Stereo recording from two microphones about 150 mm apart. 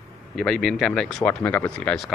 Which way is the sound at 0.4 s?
5° left (ahead or behind).